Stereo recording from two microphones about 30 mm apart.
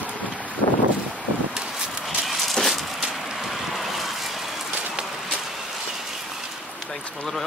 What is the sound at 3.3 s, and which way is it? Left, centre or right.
Vehicle, centre.